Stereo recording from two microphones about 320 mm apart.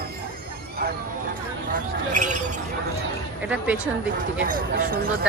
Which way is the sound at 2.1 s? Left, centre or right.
Right.